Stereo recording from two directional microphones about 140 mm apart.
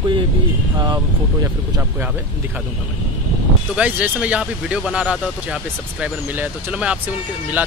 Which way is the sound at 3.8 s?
10° right (ahead or behind).